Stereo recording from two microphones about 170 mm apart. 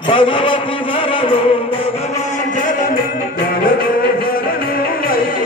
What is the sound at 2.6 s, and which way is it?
Music, 50° left (ahead or behind).